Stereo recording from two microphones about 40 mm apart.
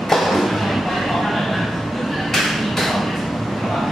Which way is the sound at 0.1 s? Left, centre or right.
Centre.